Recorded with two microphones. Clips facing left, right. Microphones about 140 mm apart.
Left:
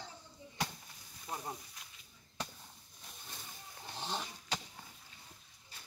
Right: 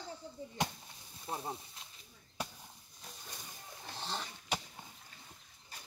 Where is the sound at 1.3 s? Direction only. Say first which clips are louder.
Right 2 dB; 25° right (ahead or behind).